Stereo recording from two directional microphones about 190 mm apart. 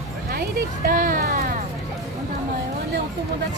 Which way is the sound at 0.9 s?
45° right (ahead or behind).